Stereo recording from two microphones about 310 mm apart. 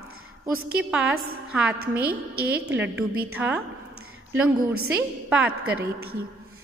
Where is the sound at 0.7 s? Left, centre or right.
Centre.